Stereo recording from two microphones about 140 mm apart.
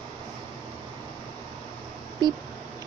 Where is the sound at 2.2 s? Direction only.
35° right (ahead or behind).